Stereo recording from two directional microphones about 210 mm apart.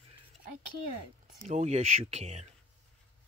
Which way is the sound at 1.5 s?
35° right (ahead or behind).